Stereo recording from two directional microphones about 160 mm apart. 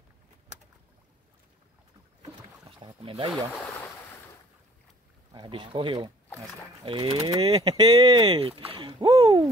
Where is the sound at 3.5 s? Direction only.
10° left (ahead or behind).